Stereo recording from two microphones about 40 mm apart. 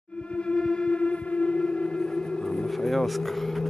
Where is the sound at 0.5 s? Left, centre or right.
Left.